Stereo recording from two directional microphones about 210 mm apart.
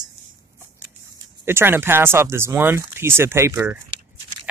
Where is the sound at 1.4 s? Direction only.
10° right (ahead or behind).